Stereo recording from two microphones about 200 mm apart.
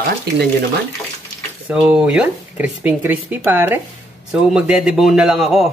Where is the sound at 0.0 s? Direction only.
55° right (ahead or behind).